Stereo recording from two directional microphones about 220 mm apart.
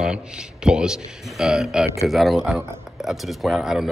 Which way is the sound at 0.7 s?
5° right (ahead or behind).